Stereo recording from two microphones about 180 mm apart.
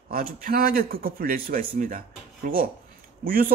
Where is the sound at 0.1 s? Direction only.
50° right (ahead or behind).